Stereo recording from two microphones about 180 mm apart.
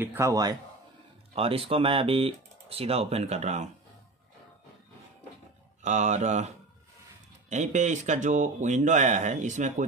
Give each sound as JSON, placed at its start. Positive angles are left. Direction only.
{"t": 0.0, "sound": "a man's voice", "side_deg": -15}
{"t": 1.3, "sound": "speech", "side_deg": -30}
{"t": 5.8, "sound": "speech", "side_deg": -40}